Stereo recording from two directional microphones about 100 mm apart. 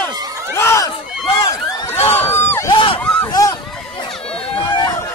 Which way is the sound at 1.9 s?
80° left.